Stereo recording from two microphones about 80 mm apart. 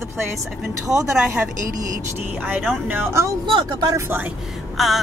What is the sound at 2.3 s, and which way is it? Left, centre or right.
Speech, centre.